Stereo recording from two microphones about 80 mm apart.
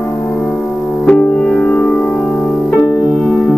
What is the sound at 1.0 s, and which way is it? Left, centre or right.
Music, centre.